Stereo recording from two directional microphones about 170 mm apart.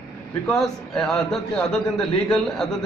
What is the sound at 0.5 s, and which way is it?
A man's voice, 5° left (ahead or behind).